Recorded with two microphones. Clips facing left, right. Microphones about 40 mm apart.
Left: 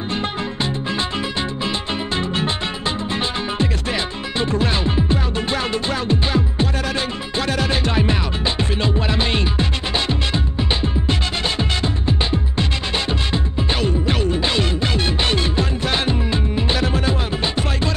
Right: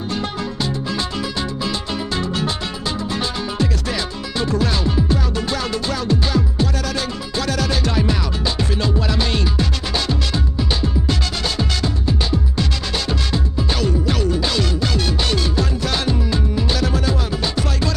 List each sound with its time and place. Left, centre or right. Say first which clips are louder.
0.1 s music: left 1 dB; left